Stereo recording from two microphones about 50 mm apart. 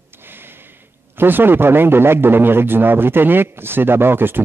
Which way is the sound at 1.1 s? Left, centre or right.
Right.